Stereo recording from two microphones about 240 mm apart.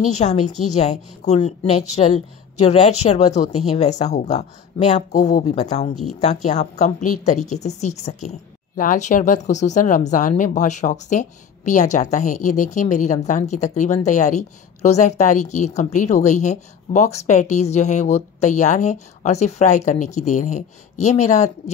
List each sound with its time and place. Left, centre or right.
0.0 s a woman's voice: left